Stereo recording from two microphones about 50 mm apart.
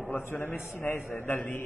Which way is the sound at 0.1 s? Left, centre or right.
Left.